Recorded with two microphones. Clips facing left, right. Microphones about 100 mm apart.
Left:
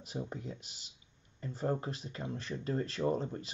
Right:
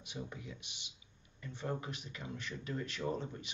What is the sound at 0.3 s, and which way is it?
Speech, 40° left (ahead or behind).